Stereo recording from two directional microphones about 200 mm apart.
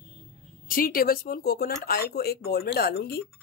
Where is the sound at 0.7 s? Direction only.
45° left (ahead or behind).